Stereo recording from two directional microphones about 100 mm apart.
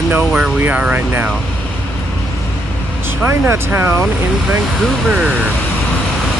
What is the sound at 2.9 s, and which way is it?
Speech, 20° right (ahead or behind).